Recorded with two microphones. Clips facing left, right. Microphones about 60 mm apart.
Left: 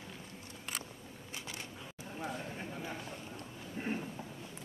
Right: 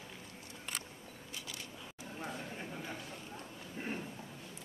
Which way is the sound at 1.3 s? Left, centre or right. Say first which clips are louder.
Left 2 dB; left.